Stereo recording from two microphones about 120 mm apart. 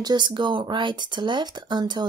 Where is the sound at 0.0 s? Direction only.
40° right (ahead or behind).